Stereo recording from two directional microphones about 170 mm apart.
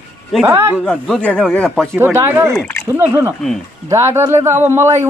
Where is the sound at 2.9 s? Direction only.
10° right (ahead or behind).